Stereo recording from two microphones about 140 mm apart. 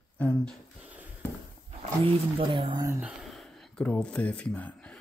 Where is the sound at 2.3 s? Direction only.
40° right (ahead or behind).